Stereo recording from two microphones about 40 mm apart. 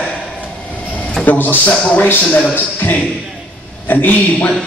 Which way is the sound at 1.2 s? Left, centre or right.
Left.